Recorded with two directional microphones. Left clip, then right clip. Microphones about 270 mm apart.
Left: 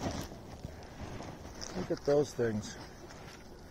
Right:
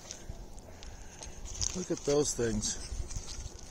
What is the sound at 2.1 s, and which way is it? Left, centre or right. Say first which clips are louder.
Speech: even; right.